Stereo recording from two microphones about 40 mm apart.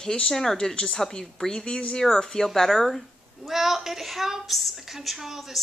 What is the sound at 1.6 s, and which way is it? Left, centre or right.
Speech, left.